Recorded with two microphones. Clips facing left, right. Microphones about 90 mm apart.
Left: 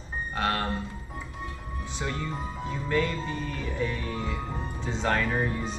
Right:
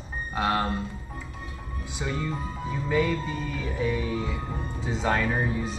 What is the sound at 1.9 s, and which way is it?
Speech, 5° right (ahead or behind).